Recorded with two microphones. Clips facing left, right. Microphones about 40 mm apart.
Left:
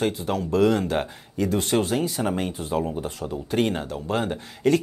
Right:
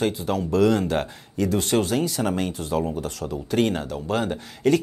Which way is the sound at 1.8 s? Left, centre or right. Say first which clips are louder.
Right 1 dB; right.